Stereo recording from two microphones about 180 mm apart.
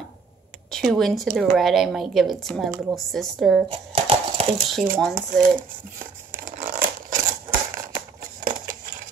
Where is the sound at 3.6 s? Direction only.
30° right (ahead or behind).